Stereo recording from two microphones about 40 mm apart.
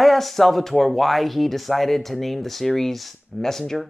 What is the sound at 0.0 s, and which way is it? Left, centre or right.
Speech, centre.